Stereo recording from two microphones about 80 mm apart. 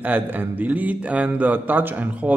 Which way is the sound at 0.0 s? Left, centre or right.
Right.